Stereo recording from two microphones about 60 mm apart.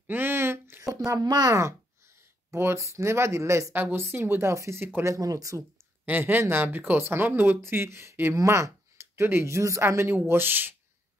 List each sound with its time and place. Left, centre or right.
0.0 s a sound: right
0.8 s speech: right
2.5 s speech: right
3.7 s speech: right
5.0 s speech: right
6.0 s speech: right